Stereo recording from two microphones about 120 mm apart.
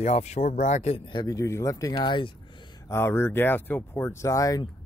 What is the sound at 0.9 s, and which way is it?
Speech, 45° left (ahead or behind).